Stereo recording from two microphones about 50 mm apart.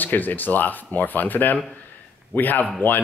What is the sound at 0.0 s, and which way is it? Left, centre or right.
Speech, left.